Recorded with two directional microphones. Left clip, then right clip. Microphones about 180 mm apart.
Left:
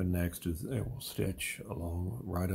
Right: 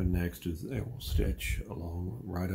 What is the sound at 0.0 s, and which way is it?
Speech, 40° left (ahead or behind).